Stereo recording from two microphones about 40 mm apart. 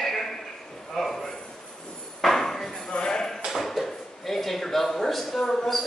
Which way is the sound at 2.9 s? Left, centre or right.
Centre.